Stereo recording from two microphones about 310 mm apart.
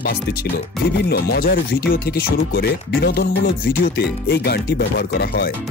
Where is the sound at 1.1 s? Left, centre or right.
Left.